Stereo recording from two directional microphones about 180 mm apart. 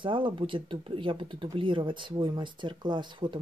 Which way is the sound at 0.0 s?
30° right (ahead or behind).